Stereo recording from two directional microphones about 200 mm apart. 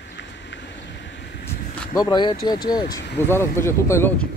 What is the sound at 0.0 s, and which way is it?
Vehicle, 60° left (ahead or behind).